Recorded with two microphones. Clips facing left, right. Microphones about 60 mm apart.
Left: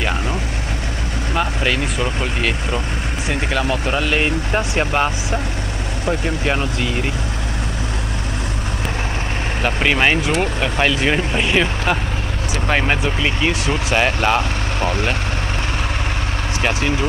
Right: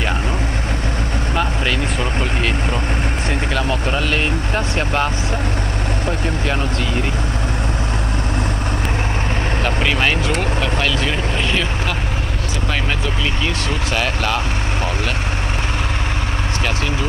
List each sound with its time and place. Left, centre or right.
1.3 s vehicle: centre
3.3 s speech: centre
9.6 s speech: centre